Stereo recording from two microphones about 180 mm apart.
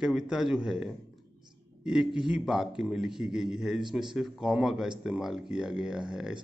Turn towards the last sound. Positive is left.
turn(degrees=-5)  # may be behind; listen again after turning